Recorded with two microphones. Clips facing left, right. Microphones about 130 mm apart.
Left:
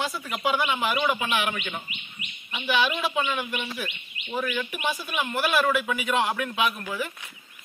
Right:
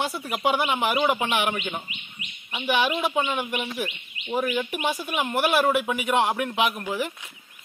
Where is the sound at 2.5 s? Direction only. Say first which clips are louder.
Right 1 dB; 15° right (ahead or behind).